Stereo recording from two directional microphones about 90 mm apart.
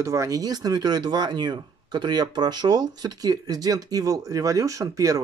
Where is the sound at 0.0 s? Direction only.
35° right (ahead or behind).